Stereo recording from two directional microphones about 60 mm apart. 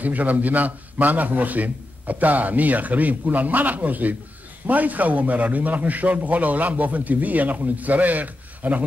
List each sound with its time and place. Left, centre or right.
0.0 s a man's voice: right